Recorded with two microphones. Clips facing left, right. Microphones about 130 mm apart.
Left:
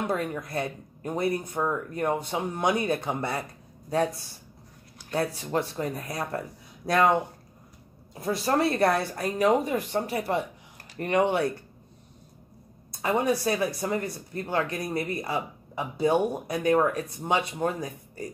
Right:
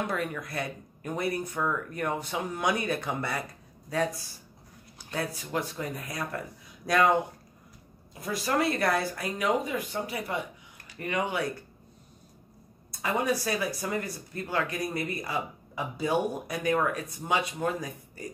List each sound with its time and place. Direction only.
0.0 s speech: 25° left (ahead or behind)
5.1 s speech: 30° left (ahead or behind)
8.1 s speech: 30° left (ahead or behind)
13.0 s speech: 25° left (ahead or behind)